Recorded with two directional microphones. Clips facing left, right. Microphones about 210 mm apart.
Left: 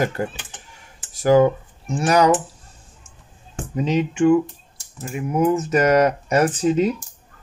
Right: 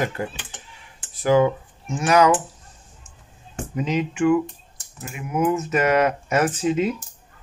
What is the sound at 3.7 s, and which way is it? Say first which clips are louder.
Speech: left 3 dB; 30° left (ahead or behind).